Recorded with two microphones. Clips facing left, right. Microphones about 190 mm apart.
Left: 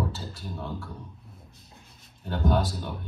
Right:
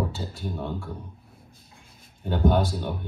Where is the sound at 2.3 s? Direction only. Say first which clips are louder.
Right 4 dB; centre (ahead or behind).